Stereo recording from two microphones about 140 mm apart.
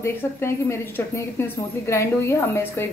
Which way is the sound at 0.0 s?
20° left (ahead or behind).